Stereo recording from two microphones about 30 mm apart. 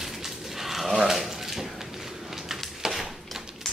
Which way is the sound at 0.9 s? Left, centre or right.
Centre.